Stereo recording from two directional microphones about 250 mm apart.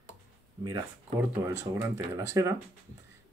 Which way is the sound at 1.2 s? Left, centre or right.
Centre.